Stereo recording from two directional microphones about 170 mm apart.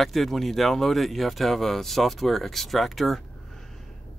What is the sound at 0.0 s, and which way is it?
Speech, centre (ahead or behind).